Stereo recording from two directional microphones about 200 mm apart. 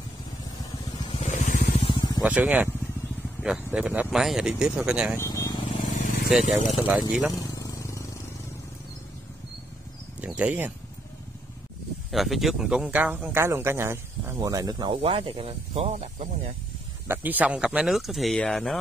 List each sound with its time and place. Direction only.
0.9 s vehicle: 25° left (ahead or behind)
1.3 s vehicle: 35° left (ahead or behind)
1.9 s snake: 20° left (ahead or behind)
2.2 s speech: 5° right (ahead or behind)
5.2 s vehicle: 15° left (ahead or behind)
5.9 s vehicle: 40° left (ahead or behind)
6.7 s speech: 5° right (ahead or behind)
7.3 s vehicle: 15° left (ahead or behind)
10.2 s speech: 5° right (ahead or behind)
12.1 s speech: centre (ahead or behind); by 16.3 s 30° right (ahead or behind)
17.1 s speech: 10° right (ahead or behind)